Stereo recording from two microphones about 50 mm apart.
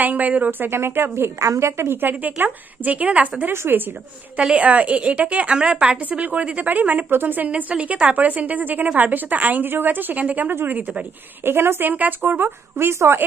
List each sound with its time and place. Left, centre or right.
0.0 s a woman's voice: right
1.4 s a woman's voice: right
2.0 s a woman's voice: right
3.5 s a woman's voice: right
4.4 s a woman's voice: right
7.1 s a woman's voice: right
11.4 s a woman's voice: right
11.9 s a woman's voice: right